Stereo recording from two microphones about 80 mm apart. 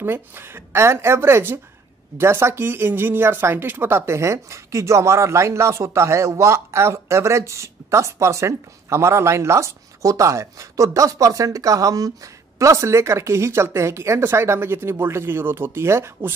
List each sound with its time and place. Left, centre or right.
0.0 s speech: right